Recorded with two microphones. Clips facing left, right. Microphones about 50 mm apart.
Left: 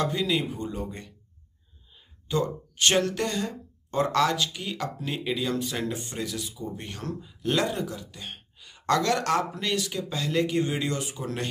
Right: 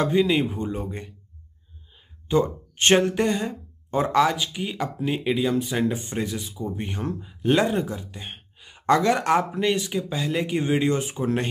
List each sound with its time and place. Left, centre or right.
0.0 s speech: right
2.2 s speech: right